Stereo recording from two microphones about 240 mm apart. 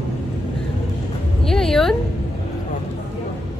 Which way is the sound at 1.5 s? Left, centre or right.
Centre.